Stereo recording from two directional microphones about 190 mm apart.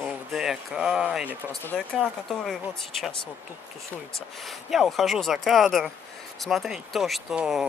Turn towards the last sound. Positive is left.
turn(degrees=0)  # may be behind; listen again after turning